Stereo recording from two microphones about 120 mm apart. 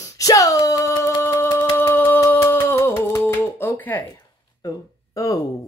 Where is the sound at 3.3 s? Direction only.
20° left (ahead or behind).